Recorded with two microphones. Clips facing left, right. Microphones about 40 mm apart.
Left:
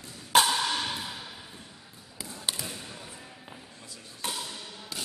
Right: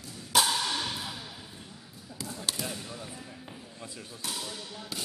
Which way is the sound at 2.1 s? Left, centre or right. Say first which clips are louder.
Even; centre.